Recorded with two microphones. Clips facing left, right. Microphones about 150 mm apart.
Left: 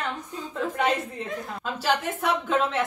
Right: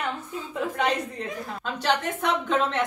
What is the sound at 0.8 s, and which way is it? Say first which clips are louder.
Speech: left 1 dB; 5° left (ahead or behind).